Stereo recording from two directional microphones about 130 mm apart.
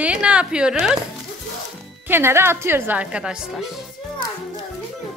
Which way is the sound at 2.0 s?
15° right (ahead or behind).